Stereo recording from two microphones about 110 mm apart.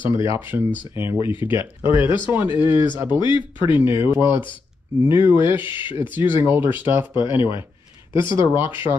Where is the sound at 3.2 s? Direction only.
45° left (ahead or behind).